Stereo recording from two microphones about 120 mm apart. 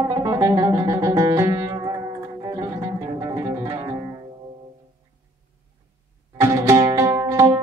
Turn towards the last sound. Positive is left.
turn(degrees=-25)  # may be behind; listen again after turning